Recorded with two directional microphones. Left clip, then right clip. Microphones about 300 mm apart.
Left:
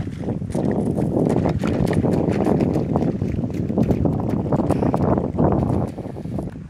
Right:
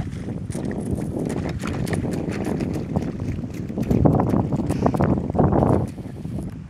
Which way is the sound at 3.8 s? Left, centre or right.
Centre.